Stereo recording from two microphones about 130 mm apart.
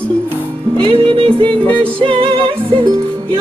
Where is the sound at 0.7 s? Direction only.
40° right (ahead or behind).